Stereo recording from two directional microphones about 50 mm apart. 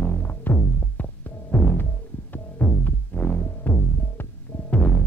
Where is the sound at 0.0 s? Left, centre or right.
Left.